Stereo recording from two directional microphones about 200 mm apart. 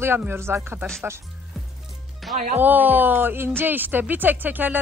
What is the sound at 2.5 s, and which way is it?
A woman's voice, 10° right (ahead or behind).